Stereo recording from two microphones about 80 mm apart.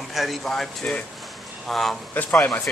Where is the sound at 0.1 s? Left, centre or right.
Centre.